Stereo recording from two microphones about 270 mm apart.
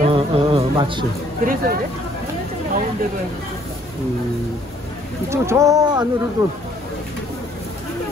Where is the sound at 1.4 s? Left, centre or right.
Right.